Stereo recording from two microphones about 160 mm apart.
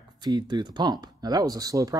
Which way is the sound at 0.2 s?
25° right (ahead or behind).